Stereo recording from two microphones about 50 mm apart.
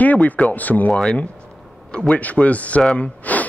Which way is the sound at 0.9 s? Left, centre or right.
Centre.